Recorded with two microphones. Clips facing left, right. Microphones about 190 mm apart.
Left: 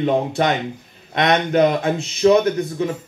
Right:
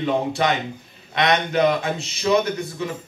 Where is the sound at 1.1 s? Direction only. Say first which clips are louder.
Left 3 dB; 50° left (ahead or behind).